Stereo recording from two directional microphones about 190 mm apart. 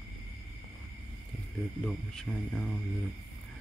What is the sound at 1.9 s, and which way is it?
Speech, centre (ahead or behind).